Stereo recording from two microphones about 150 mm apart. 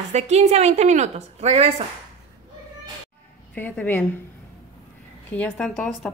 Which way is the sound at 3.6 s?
10° left (ahead or behind).